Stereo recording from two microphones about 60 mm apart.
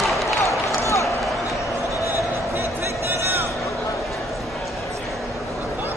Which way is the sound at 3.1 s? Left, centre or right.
Right.